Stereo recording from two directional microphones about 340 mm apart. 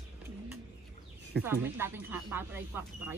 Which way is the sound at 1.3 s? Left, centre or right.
Centre.